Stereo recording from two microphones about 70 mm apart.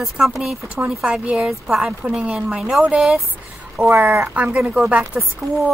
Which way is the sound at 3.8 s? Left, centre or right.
Right.